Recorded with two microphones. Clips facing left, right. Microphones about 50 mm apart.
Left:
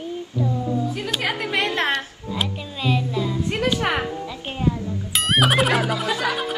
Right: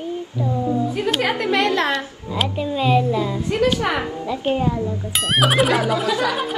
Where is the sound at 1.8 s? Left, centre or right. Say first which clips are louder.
Right 2 dB; left.